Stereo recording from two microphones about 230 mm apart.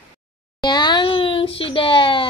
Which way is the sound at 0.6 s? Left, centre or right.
Centre.